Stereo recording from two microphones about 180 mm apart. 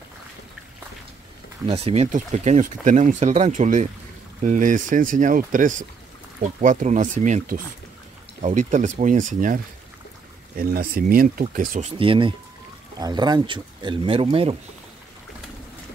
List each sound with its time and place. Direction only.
1.7 s speech: 35° right (ahead or behind)
12.0 s speech: 30° right (ahead or behind)